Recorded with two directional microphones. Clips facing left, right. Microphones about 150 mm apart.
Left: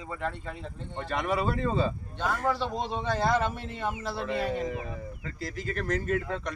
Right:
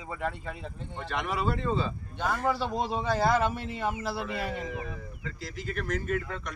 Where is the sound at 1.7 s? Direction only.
45° left (ahead or behind).